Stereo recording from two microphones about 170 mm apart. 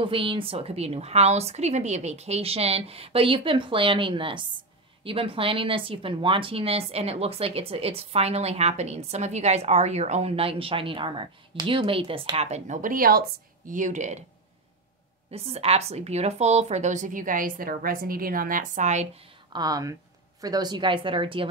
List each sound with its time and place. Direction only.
0.0 s a woman's voice: 30° right (ahead or behind)
15.3 s a woman's voice: 35° right (ahead or behind)
19.5 s speech: 20° right (ahead or behind)